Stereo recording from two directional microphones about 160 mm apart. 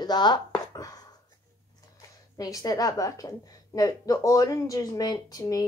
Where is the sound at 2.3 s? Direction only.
20° left (ahead or behind).